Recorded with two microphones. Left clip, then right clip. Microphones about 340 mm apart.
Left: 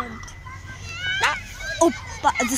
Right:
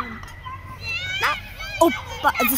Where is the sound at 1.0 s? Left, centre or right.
Centre.